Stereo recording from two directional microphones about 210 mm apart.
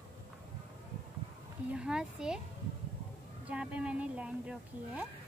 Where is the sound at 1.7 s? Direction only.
5° right (ahead or behind).